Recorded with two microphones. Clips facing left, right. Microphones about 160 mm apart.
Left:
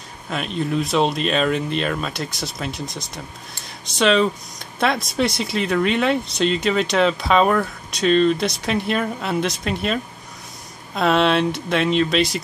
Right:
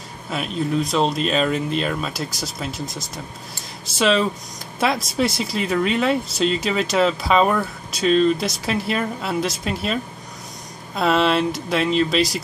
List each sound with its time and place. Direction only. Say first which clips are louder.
0.3 s speech: even; centre (ahead or behind)
11.0 s speech: left 1 dB; centre (ahead or behind)